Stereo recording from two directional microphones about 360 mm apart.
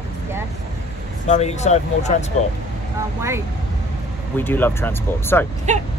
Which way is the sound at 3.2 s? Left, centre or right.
Centre.